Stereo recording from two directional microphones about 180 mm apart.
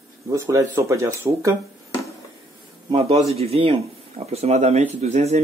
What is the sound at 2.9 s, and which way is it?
Speech, 30° right (ahead or behind).